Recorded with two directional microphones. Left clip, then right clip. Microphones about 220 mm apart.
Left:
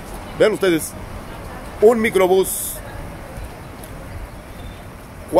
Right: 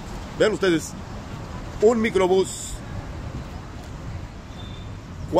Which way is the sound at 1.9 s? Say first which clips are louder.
Left 5 dB; 5° left (ahead or behind).